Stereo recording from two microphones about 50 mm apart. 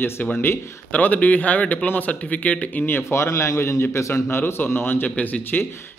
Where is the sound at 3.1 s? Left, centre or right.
Left.